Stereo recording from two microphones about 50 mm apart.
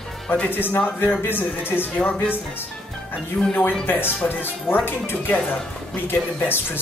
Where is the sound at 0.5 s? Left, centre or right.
Left.